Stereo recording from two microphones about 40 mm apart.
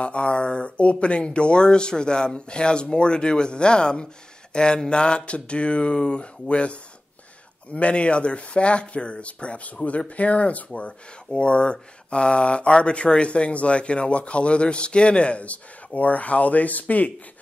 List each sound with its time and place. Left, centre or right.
0.0 s speech: left